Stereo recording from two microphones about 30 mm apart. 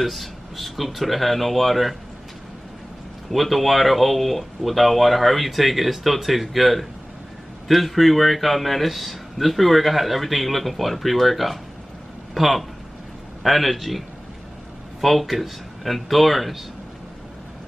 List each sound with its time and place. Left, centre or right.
0.0 s a man's voice: centre
3.3 s a man's voice: centre